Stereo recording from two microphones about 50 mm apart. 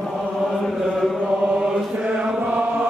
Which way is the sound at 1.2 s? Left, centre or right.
Centre.